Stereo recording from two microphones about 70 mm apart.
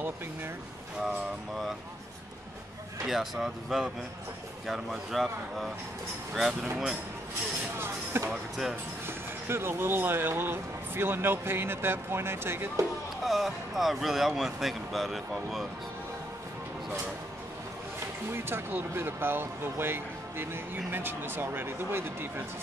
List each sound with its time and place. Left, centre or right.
3.1 s speech: centre
7.8 s music: right
8.3 s speech: centre
9.0 s speech: right
13.2 s speech: centre
18.3 s speech: right